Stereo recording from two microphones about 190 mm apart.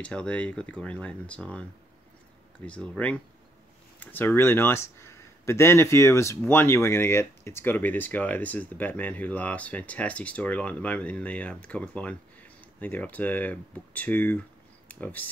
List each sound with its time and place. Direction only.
0.0 s speech: 5° left (ahead or behind)